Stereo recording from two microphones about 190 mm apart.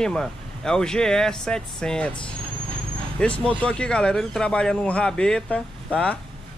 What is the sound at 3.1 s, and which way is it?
Speech, 5° left (ahead or behind).